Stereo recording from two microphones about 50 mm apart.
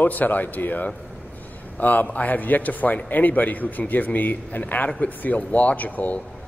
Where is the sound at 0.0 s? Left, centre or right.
Left.